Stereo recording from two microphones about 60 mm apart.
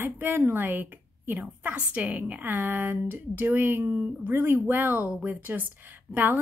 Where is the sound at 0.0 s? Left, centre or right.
Right.